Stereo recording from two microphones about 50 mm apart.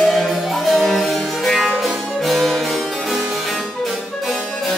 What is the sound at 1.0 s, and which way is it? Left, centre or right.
Harpsichord, centre.